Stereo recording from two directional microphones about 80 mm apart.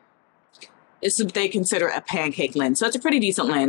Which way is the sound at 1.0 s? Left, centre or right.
Centre.